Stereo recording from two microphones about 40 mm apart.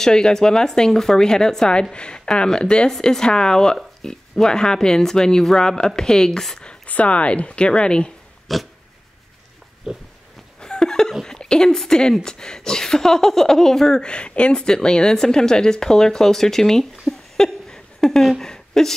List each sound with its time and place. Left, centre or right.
0.0 s speech: centre
6.9 s speech: left
8.5 s pig: centre
9.9 s pig: centre
10.6 s a sound: centre
11.7 s speech: centre
14.0 s speech: left
14.6 s speech: centre
17.1 s a sound: centre
17.4 s a sound: centre
18.4 s a woman's voice: centre